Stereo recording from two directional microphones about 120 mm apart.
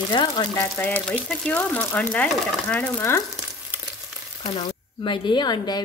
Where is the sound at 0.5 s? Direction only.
20° left (ahead or behind).